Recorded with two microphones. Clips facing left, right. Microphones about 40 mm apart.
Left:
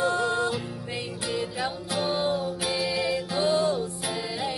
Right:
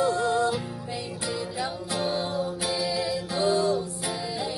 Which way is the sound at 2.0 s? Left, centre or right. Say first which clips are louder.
Left 2 dB; left.